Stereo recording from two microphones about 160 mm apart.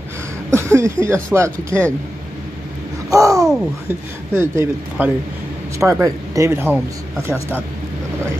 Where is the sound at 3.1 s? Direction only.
20° right (ahead or behind).